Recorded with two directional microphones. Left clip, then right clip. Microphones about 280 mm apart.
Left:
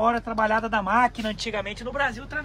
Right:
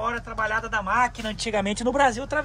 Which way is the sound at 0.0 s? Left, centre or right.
Centre.